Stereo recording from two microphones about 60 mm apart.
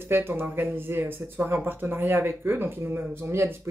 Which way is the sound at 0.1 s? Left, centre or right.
Right.